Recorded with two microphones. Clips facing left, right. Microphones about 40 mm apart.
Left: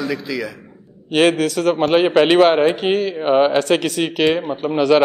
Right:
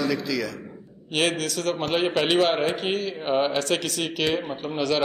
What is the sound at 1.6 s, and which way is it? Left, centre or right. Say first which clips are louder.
A man's voice: left 9 dB; left.